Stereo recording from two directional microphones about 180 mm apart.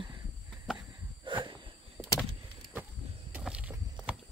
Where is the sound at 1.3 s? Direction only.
25° right (ahead or behind).